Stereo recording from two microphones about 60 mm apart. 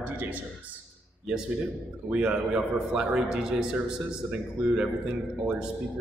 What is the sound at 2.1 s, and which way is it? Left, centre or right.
A man's voice, centre.